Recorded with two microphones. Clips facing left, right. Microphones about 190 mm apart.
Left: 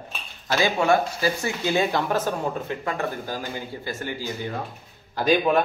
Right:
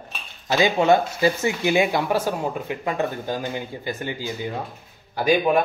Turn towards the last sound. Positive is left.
turn(degrees=-10)  # may be behind; listen again after turning